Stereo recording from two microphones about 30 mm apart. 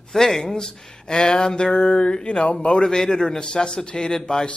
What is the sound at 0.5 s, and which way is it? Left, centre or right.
Speech, left.